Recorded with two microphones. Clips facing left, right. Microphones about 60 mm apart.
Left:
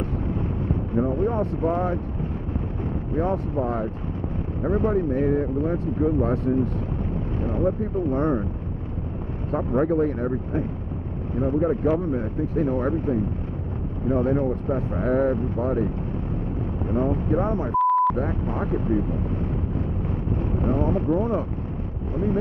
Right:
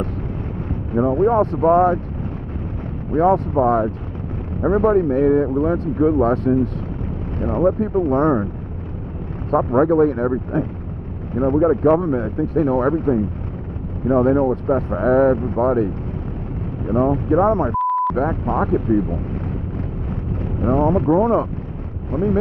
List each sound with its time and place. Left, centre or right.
0.9 s speech: right
3.2 s speech: right
9.5 s speech: right
11.6 s speech: right
16.9 s speech: right
17.7 s a sound: centre
18.1 s speech: right
20.6 s speech: right